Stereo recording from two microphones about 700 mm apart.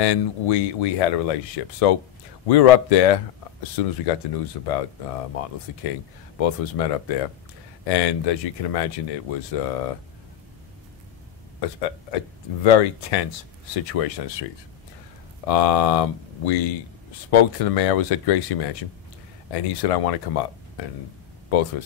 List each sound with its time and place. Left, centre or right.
0.0 s speech: left
11.6 s speech: left
15.4 s speech: left